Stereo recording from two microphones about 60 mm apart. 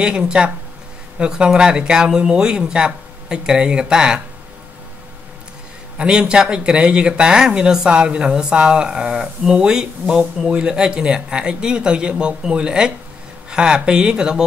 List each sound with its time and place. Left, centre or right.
0.0 s speech: centre
5.9 s speech: centre